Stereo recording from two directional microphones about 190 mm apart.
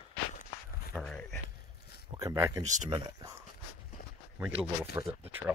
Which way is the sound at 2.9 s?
15° right (ahead or behind).